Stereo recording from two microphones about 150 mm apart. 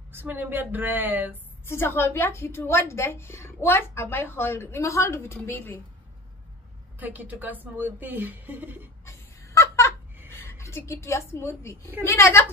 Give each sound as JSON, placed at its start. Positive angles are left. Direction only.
{"t": 0.1, "sound": "a woman's voice", "side_deg": -15}
{"t": 1.7, "sound": "a woman's voice", "side_deg": 15}
{"t": 7.0, "sound": "a woman's voice", "side_deg": -10}
{"t": 9.0, "sound": "a sound", "side_deg": 20}
{"t": 10.3, "sound": "a woman's voice", "side_deg": 15}